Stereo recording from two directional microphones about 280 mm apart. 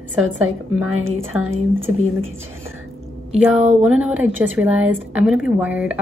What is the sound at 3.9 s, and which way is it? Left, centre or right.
Speech, centre.